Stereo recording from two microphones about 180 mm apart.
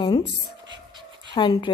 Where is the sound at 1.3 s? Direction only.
25° left (ahead or behind).